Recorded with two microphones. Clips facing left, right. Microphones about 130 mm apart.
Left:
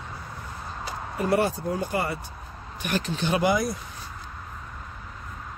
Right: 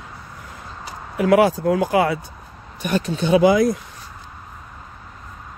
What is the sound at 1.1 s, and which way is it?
Speech, 90° right.